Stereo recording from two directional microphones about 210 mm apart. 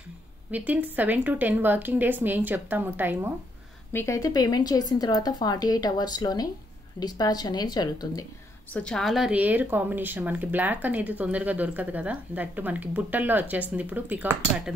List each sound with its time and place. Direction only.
0.5 s a woman's voice: 5° right (ahead or behind)
3.9 s speech: 15° left (ahead or behind)
8.7 s a woman's voice: 5° left (ahead or behind)